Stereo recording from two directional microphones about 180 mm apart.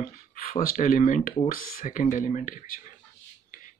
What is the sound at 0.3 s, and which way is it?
Speech, 50° left (ahead or behind).